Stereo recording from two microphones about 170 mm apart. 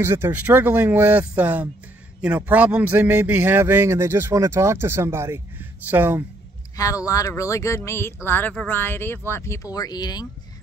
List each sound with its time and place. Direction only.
0.0 s a man's voice: 15° right (ahead or behind)
6.8 s speech: 20° left (ahead or behind)